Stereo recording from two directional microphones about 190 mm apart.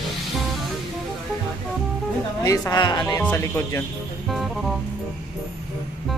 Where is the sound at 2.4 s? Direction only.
20° left (ahead or behind).